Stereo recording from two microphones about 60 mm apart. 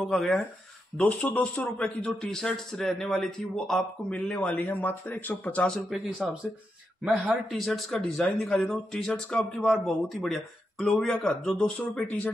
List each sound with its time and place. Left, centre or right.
0.0 s speech: centre
0.9 s speech: left
2.0 s speech: centre
4.1 s speech: left
4.6 s speech: left
5.7 s speech: centre
7.4 s speech: centre
9.6 s speech: centre
11.2 s speech: centre